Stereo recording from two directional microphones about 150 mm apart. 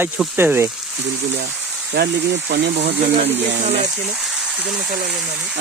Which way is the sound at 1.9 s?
90° right.